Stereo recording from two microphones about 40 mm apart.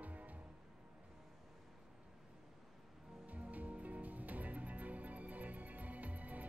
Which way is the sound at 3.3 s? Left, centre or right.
Right.